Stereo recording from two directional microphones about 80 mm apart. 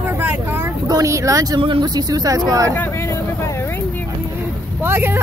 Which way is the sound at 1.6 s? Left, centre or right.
Right.